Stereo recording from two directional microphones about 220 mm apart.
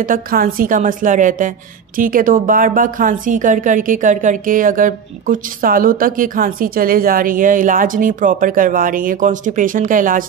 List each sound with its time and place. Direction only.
0.0 s a woman's voice: 40° right (ahead or behind)